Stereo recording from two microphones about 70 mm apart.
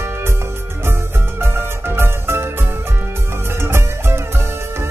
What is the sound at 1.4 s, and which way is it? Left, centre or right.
Music, right.